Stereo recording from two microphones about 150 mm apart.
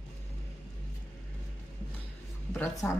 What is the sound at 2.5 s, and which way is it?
Speech, 15° left (ahead or behind).